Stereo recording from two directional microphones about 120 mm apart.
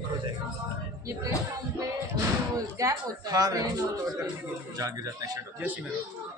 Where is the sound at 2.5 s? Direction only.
30° right (ahead or behind).